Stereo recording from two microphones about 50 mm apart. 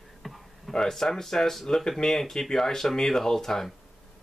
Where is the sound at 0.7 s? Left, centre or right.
Centre.